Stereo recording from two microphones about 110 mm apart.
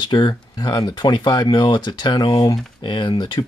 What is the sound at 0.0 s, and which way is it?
Speech, 40° left (ahead or behind).